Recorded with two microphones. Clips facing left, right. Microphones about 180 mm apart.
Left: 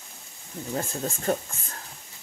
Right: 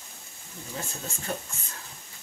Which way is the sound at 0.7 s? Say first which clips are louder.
Left 8 dB; 45° left (ahead or behind).